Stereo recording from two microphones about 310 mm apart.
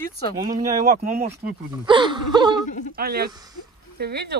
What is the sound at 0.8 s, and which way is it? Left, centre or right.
Speech, right.